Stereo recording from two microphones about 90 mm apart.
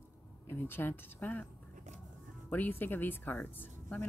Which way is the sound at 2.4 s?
20° left (ahead or behind).